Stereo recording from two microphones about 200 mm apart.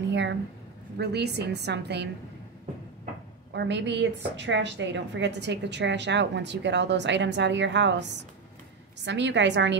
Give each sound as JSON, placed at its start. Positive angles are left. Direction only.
{"t": 0.1, "sound": "a sound", "side_deg": -60}
{"t": 0.9, "sound": "a woman's voice", "side_deg": -55}
{"t": 3.5, "sound": "a woman's voice", "side_deg": -60}